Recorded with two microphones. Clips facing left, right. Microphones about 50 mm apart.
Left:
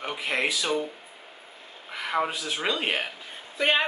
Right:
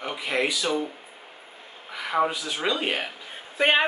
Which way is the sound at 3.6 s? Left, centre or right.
Right.